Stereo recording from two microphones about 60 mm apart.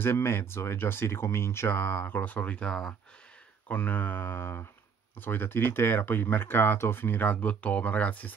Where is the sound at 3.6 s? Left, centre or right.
Left.